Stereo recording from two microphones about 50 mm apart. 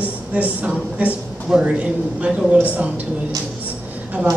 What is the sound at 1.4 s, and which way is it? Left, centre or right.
A woman's voice, centre.